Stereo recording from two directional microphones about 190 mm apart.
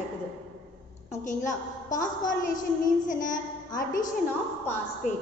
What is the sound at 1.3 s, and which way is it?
A woman's voice, 40° left (ahead or behind).